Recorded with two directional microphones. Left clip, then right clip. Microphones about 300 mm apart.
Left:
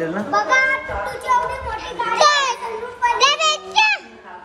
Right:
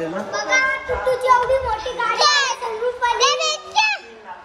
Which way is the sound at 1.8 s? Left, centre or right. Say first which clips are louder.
Left 2 dB; centre.